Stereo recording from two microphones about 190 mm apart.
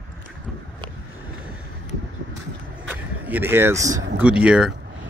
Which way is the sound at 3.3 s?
10° right (ahead or behind).